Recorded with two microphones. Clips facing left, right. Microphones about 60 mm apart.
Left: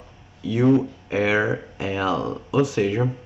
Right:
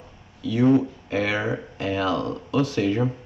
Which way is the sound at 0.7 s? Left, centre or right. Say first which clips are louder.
Left 1 dB; centre.